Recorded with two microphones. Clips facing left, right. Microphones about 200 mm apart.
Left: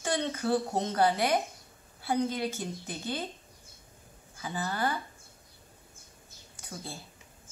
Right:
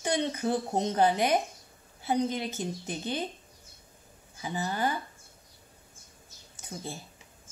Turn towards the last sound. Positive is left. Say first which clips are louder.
# right 3 dB
turn(degrees=-20)  # may be behind; listen again after turning